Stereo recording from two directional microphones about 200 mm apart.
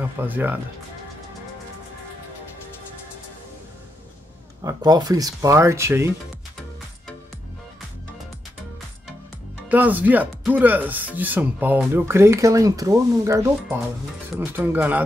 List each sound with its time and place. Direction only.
0.0 s speech: 10° right (ahead or behind)
4.6 s speech: 20° right (ahead or behind)
9.7 s speech: 10° right (ahead or behind)